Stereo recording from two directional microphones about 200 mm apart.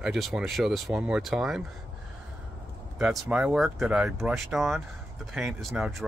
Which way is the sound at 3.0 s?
5° right (ahead or behind).